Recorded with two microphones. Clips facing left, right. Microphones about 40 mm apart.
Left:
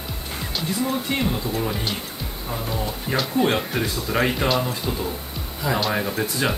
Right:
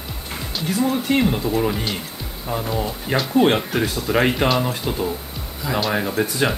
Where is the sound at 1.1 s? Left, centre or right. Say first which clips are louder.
Right 5 dB; right.